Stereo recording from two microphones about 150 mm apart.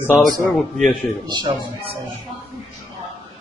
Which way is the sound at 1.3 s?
30° right (ahead or behind).